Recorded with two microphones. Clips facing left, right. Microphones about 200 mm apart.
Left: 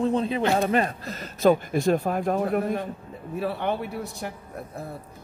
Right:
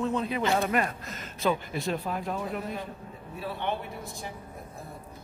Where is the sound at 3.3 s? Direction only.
65° left (ahead or behind).